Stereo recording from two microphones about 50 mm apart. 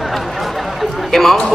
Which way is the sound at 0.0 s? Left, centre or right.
Centre.